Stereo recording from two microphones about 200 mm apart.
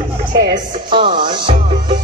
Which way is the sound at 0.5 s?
25° right (ahead or behind).